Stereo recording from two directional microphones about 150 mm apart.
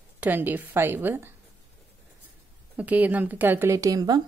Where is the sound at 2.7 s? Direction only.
10° right (ahead or behind); by 4.2 s 25° right (ahead or behind).